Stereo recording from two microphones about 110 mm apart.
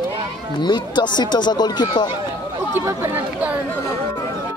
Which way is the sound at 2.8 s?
20° right (ahead or behind).